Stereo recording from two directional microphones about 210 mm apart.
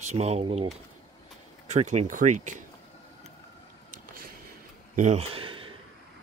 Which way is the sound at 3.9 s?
40° right (ahead or behind).